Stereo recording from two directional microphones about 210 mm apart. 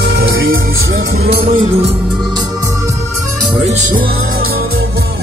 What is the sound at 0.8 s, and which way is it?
Music, 65° right (ahead or behind).